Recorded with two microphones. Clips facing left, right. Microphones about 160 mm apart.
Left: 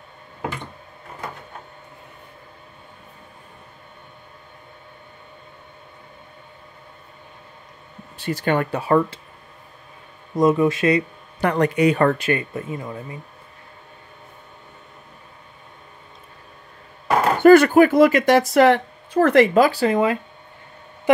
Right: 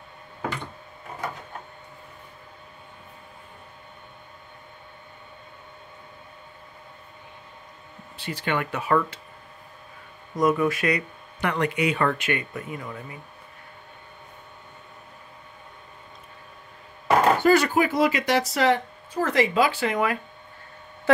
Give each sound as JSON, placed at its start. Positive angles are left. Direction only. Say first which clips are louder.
{"t": 8.2, "sound": "speech", "louder": "left 6 dB", "side_deg": 45}
{"t": 10.3, "sound": "speech", "louder": "left 5 dB", "side_deg": 25}
{"t": 11.4, "sound": "speech", "louder": "left 7 dB", "side_deg": 40}
{"t": 17.4, "sound": "speech", "louder": "left 9 dB", "side_deg": 55}